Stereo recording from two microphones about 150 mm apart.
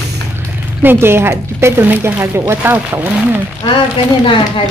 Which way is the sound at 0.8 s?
15° right (ahead or behind).